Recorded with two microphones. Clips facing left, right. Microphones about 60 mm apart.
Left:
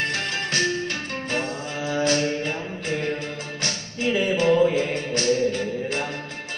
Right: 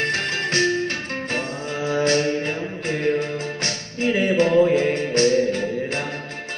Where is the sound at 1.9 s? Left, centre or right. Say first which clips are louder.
Right 3 dB; right.